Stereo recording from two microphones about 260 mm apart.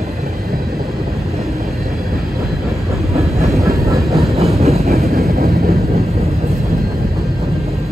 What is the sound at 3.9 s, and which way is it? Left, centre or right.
Train, centre.